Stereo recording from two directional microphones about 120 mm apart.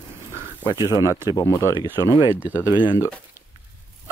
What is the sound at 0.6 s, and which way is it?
Speech, 25° right (ahead or behind).